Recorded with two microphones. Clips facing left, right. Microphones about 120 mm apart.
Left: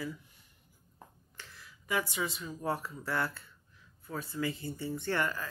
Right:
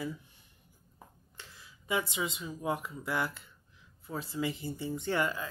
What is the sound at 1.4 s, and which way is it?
Speech, 25° right (ahead or behind).